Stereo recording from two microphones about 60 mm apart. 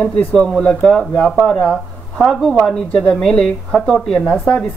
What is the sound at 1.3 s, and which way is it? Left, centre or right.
A woman's voice, centre.